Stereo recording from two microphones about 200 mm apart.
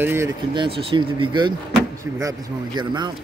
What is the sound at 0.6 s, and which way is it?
Speech, 25° right (ahead or behind).